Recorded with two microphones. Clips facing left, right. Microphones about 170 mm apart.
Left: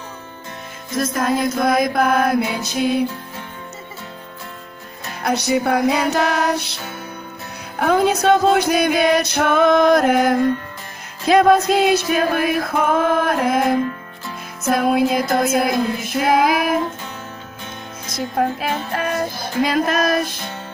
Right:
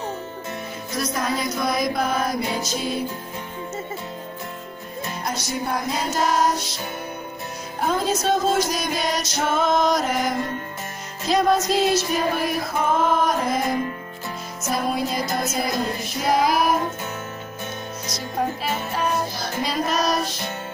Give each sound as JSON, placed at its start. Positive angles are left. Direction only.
{"t": 0.9, "sound": "music", "side_deg": 50}
{"t": 5.2, "sound": "music", "side_deg": 65}
{"t": 7.8, "sound": "music", "side_deg": 65}
{"t": 18.0, "sound": "music", "side_deg": 55}